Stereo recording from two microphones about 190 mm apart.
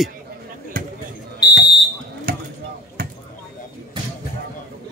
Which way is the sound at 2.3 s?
55° right (ahead or behind).